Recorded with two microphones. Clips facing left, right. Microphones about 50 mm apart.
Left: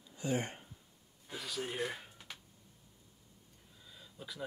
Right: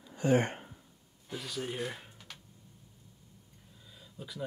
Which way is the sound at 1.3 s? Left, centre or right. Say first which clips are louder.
Right 2 dB; centre.